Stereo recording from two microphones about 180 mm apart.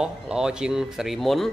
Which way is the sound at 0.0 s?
5° right (ahead or behind).